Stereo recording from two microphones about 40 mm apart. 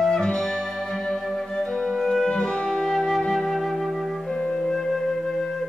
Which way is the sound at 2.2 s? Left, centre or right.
Centre.